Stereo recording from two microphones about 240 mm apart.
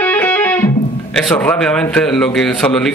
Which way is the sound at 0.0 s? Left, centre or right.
Centre.